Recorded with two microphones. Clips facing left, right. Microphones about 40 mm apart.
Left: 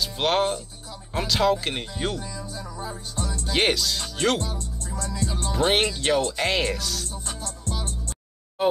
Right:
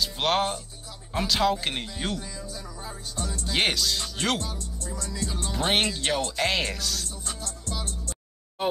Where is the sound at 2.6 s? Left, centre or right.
Left.